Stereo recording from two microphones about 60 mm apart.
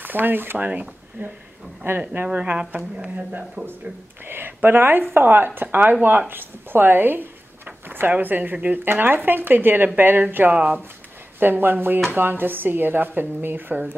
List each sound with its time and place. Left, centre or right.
0.0 s speech: right
1.8 s speech: right
2.3 s speech: right
4.3 s speech: right